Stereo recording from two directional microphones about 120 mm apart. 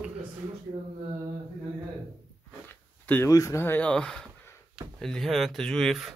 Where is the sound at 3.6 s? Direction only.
15° left (ahead or behind).